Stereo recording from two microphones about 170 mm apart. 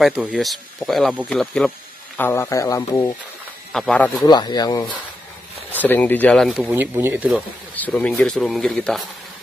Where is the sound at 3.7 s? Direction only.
5° left (ahead or behind).